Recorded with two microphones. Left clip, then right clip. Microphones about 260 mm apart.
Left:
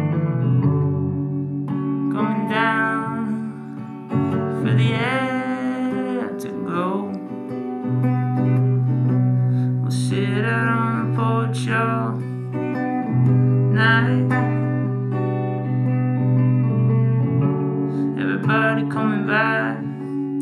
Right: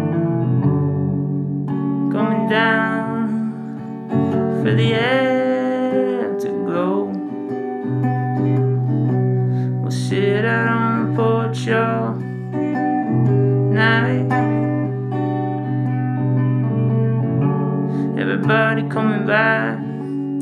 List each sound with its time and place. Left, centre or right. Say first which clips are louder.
2.0 s music: right 5 dB; left
10.1 s music: right 6 dB; left
17.9 s music: right 2 dB; left